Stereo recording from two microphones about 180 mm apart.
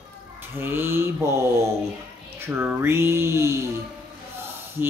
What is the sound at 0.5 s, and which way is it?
Speech, 10° right (ahead or behind).